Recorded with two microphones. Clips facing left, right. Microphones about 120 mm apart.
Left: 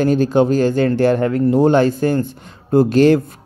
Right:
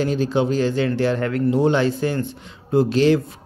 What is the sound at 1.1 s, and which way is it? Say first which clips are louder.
Speech: left 5 dB; 30° left (ahead or behind).